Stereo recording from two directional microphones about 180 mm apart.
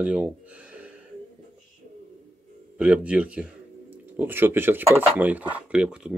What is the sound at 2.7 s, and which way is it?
Speech, 5° right (ahead or behind).